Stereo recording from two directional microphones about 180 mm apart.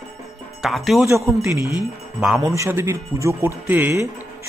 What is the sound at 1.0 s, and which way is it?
Speech, 15° right (ahead or behind).